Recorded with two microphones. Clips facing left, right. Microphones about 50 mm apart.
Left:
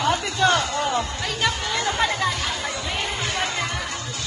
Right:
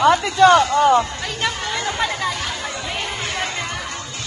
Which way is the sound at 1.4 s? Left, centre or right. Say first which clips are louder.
Right 1 dB; centre.